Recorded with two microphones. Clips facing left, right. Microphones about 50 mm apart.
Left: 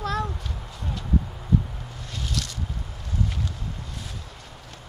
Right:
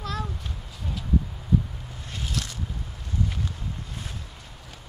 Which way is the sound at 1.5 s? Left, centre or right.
Centre.